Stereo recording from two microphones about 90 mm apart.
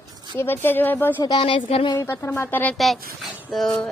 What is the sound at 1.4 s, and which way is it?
Speech, 75° left (ahead or behind).